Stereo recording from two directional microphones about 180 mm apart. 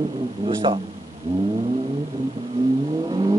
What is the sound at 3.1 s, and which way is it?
Vehicle, 25° right (ahead or behind).